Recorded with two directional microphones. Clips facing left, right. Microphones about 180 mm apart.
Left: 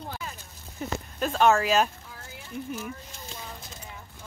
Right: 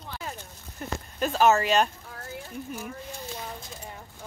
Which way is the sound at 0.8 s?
Centre (ahead or behind).